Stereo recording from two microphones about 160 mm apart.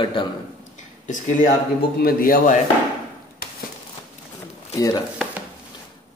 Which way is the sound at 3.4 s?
75° left (ahead or behind).